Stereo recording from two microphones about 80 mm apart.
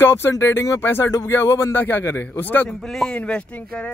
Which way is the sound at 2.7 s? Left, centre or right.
Centre.